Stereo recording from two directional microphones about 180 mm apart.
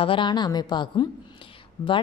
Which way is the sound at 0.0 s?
30° left (ahead or behind).